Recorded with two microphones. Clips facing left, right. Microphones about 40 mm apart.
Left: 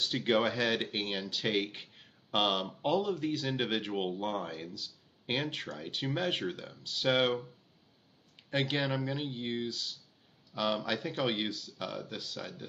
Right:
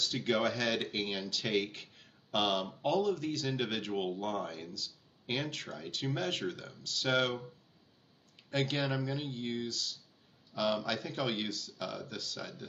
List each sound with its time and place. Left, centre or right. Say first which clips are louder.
0.0 s speech: left 2 dB; left
8.5 s speech: left 1 dB; centre